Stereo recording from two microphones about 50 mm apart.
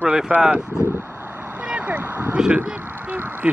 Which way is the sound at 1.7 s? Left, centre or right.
Right.